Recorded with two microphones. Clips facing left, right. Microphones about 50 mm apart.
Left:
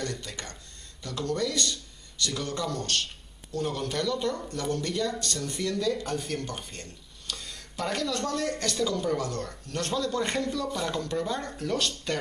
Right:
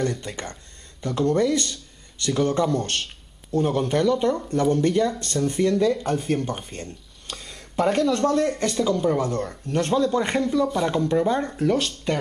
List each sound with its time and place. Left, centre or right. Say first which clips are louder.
0.0 s speech: right 8 dB; right